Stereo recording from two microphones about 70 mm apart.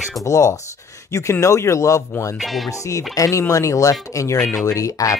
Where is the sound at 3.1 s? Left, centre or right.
Left.